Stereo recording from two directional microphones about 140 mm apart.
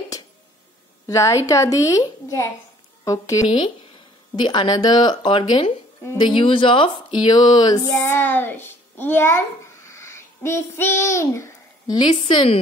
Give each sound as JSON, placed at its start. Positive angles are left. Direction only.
{"t": 1.0, "sound": "speech", "side_deg": 20}
{"t": 9.8, "sound": "a sound", "side_deg": 20}
{"t": 12.0, "sound": "speech", "side_deg": 35}